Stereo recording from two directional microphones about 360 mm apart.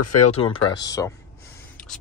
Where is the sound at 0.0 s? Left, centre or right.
Left.